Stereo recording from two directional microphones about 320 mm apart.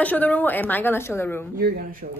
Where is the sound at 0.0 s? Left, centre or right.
Centre.